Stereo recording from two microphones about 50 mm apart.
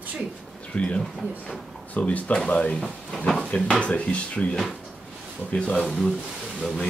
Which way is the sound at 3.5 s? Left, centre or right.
Left.